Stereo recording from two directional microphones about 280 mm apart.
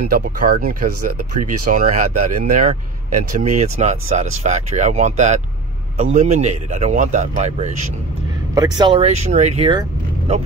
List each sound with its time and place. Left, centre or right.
0.1 s speech: right
8.5 s speech: centre